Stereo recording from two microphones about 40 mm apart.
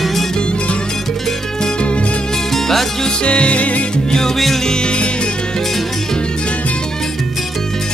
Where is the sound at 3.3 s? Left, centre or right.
Left.